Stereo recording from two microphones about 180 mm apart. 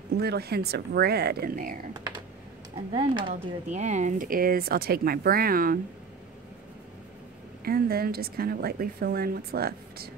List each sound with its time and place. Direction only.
0.2 s a woman's voice: 65° right (ahead or behind)
2.9 s speech: 25° right (ahead or behind)
3.7 s speech: 40° right (ahead or behind)
7.6 s a woman's voice: 55° right (ahead or behind)